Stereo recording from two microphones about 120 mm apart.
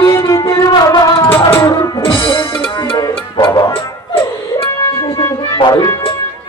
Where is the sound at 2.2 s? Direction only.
45° left (ahead or behind).